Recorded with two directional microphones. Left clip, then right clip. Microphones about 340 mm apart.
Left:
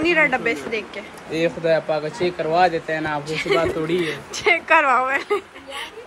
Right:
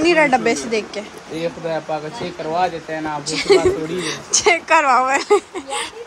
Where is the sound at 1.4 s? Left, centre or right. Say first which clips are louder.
Left 4 dB; left.